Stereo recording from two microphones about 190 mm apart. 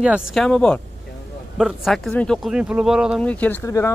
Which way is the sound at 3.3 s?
10° left (ahead or behind).